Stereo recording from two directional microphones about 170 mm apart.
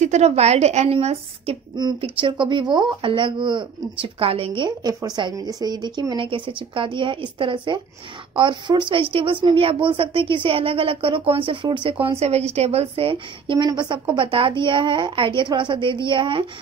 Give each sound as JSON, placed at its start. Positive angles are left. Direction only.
{"t": 0.0, "sound": "speech", "side_deg": -40}